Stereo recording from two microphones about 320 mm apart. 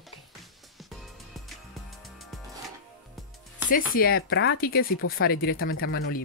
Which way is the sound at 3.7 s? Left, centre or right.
Left.